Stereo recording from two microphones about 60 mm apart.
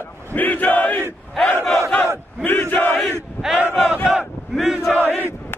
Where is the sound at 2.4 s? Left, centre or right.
Left.